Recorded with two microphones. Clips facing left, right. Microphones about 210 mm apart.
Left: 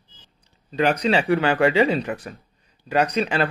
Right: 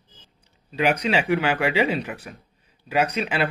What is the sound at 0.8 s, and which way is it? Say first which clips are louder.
Speech: left 1 dB; 35° left (ahead or behind).